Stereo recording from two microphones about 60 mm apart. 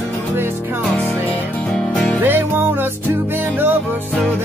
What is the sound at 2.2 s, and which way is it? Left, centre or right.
Music, right.